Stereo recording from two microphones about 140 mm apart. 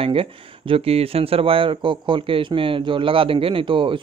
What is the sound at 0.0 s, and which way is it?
Speech, 40° right (ahead or behind).